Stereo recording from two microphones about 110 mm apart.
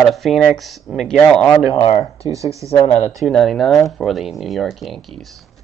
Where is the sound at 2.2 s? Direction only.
30° right (ahead or behind).